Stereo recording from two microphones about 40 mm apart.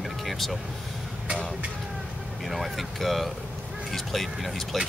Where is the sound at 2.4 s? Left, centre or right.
Centre.